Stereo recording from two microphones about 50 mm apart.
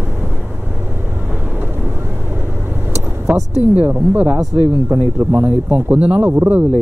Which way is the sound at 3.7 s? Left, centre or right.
Right.